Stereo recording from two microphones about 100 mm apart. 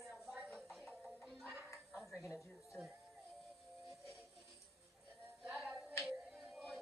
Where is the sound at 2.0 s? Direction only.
10° right (ahead or behind).